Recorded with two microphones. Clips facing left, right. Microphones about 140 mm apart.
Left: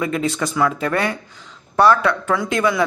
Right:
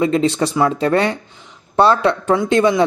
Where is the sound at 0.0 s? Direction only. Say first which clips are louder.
Right 6 dB; 30° right (ahead or behind).